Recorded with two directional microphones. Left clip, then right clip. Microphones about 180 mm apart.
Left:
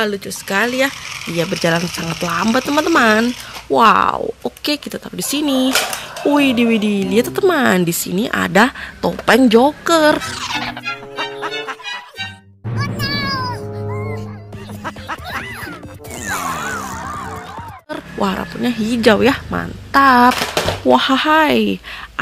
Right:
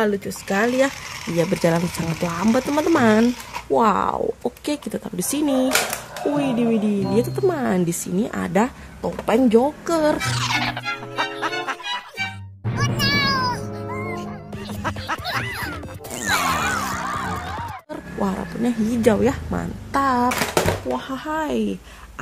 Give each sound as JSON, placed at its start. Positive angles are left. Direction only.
{"t": 0.0, "sound": "speech", "side_deg": -5}
{"t": 11.1, "sound": "music", "side_deg": 0}
{"t": 12.9, "sound": "music", "side_deg": 0}
{"t": 18.2, "sound": "speech", "side_deg": 5}
{"t": 20.9, "sound": "speech", "side_deg": 20}